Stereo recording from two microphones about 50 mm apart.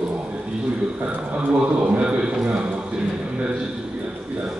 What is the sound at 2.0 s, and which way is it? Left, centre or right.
Speech, right.